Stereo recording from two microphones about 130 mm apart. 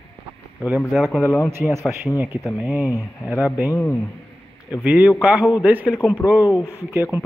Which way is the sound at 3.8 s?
10° left (ahead or behind).